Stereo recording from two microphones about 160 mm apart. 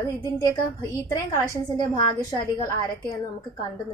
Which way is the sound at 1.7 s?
25° left (ahead or behind).